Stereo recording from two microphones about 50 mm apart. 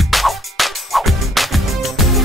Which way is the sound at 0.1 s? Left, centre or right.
Centre.